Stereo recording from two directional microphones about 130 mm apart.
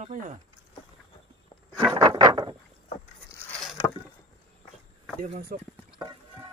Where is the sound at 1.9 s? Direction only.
30° right (ahead or behind).